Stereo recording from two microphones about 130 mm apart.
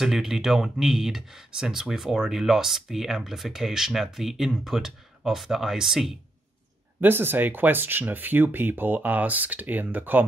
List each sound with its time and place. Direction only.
0.0 s speech: 5° right (ahead or behind)
7.0 s speech: 15° right (ahead or behind)